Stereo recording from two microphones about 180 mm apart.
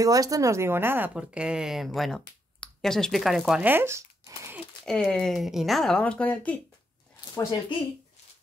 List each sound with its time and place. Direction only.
0.0 s a woman's voice: 20° right (ahead or behind)
4.8 s a woman's voice: 5° left (ahead or behind)
7.7 s speech: 30° left (ahead or behind)